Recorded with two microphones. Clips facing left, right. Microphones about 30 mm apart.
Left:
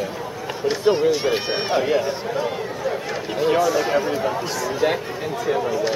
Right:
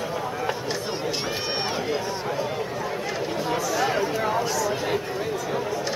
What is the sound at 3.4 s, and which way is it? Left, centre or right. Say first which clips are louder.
Speech: left 9 dB; left.